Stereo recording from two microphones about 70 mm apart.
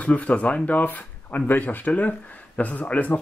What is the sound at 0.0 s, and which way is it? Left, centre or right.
Speech, centre.